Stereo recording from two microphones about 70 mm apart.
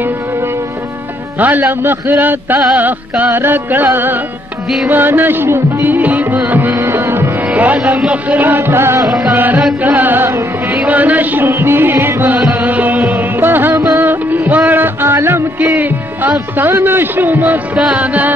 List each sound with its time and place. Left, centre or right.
1.4 s music: right
5.9 s music: right
7.5 s music: right
15.6 s speech: right
17.9 s music: right